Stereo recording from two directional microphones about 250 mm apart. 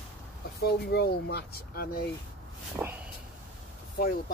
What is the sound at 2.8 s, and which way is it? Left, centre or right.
Speech, centre.